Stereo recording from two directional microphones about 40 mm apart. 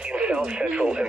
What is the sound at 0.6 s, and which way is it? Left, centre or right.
Speech, right.